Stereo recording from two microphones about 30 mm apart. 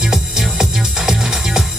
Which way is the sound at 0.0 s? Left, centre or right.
Centre.